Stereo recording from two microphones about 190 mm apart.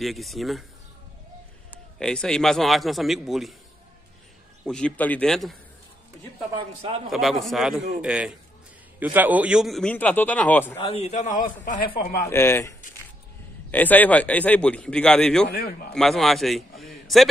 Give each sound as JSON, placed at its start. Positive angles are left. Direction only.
{"t": 0.0, "sound": "a man's voice", "side_deg": 0}
{"t": 2.0, "sound": "a man's voice", "side_deg": 5}
{"t": 4.6, "sound": "a man's voice", "side_deg": 5}
{"t": 7.1, "sound": "a man's voice", "side_deg": 0}
{"t": 10.8, "sound": "a man's voice", "side_deg": 30}
{"t": 12.0, "sound": "speech", "side_deg": 55}
{"t": 12.3, "sound": "a man's voice", "side_deg": 15}
{"t": 15.5, "sound": "a man's voice", "side_deg": 50}
{"t": 15.9, "sound": "a man's voice", "side_deg": 0}